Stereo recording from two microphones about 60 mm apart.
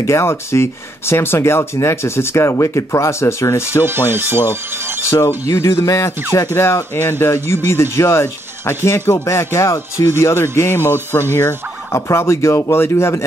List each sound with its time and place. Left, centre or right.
0.0 s speech: left
3.8 s speech: right
5.5 s speech: left
6.5 s speech: left
11.9 s speech: left